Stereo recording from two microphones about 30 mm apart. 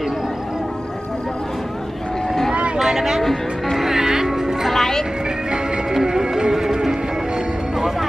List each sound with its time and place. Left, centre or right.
2.9 s a sound: centre
3.7 s music: centre
4.7 s music: centre
6.0 s music: right